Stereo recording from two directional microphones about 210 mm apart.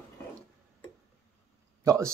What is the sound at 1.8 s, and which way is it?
Speech, 15° right (ahead or behind).